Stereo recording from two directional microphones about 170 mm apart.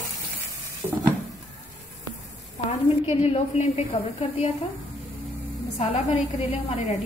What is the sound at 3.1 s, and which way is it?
Speech, 40° left (ahead or behind).